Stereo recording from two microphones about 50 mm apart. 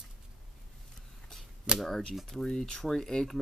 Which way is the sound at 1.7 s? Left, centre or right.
Right.